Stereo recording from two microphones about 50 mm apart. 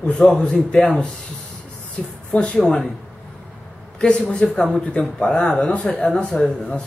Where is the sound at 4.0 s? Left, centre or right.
Left.